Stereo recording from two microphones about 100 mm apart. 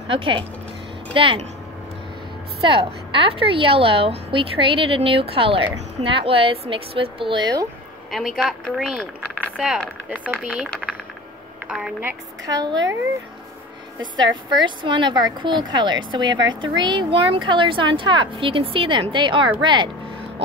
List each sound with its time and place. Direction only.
0.1 s a woman's voice: 60° right (ahead or behind)
2.6 s a woman's voice: 60° right (ahead or behind)
8.1 s a woman's voice: centre (ahead or behind)
10.0 s speech: 15° right (ahead or behind)
12.4 s a woman's voice: 40° right (ahead or behind)
14.1 s a woman's voice: 50° right (ahead or behind)